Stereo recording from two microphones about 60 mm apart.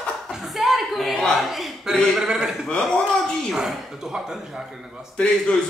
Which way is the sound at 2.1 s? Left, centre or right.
Centre.